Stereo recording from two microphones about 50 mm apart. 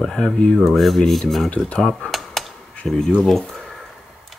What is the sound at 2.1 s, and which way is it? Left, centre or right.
Computer keyboard, centre.